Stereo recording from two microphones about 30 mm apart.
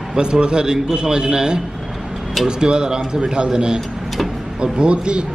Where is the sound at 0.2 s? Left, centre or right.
Right.